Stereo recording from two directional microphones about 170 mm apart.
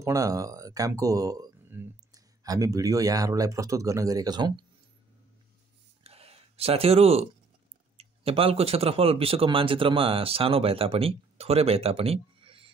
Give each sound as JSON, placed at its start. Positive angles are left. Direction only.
{"t": 0.0, "sound": "speech", "side_deg": -20}
{"t": 6.0, "sound": "a sound", "side_deg": -35}
{"t": 8.0, "sound": "speech", "side_deg": -35}